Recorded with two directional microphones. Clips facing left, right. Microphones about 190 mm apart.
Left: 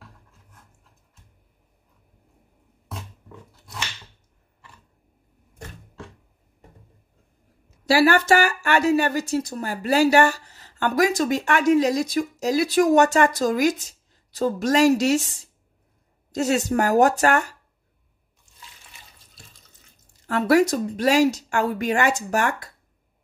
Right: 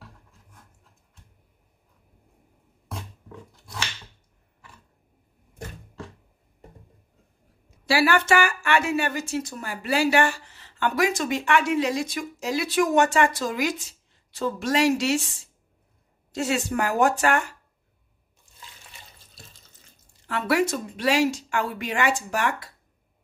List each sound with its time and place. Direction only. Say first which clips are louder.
0.0 s writing: right 1 dB; centre (ahead or behind)
2.9 s a sound: right 1 dB; centre (ahead or behind)
7.8 s speech: left 4 dB; 40° left (ahead or behind)
20.2 s speech: left 5 dB; 40° left (ahead or behind)